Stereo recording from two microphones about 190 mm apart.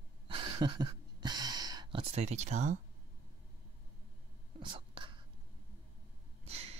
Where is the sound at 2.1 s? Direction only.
35° right (ahead or behind).